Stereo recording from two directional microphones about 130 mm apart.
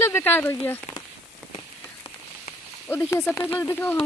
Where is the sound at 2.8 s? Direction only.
20° left (ahead or behind).